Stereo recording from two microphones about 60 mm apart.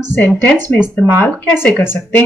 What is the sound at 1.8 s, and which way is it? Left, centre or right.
Speech, left.